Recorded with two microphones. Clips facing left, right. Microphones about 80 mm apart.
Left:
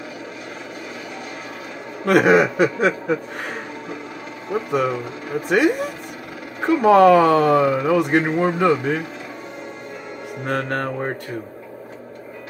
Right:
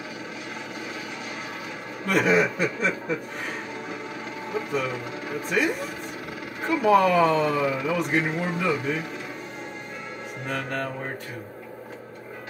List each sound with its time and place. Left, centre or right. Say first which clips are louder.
2.0 s speech: left 7 dB; left
5.5 s speech: left 8 dB; left
10.4 s speech: left 7 dB; left